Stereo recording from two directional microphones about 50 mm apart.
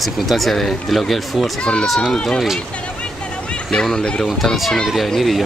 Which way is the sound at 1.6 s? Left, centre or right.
Centre.